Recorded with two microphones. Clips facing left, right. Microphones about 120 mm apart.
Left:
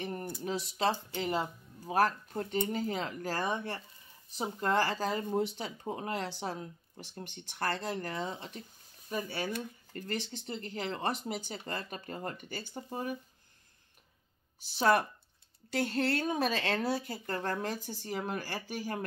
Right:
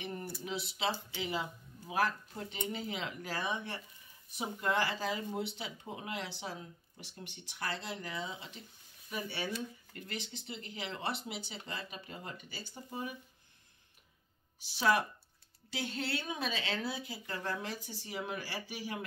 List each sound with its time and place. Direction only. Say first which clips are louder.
0.0 s a sound: left 4 dB; 45° left (ahead or behind)
0.4 s speech: left 7 dB; 45° left (ahead or behind)
14.7 s speech: left 3 dB; 45° left (ahead or behind)